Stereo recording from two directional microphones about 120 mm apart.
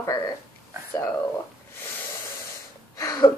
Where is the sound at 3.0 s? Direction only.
30° left (ahead or behind).